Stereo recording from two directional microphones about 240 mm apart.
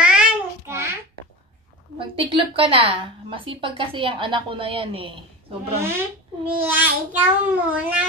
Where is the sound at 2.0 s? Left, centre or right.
Right.